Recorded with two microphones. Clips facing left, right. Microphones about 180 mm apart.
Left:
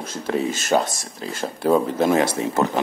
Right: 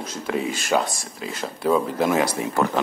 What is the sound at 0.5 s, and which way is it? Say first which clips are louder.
Speech: left 2 dB; 45° left (ahead or behind).